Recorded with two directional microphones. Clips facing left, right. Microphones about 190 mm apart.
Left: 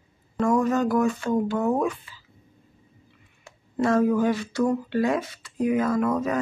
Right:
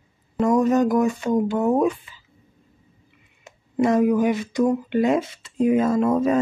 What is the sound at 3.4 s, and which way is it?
Speech, 15° right (ahead or behind).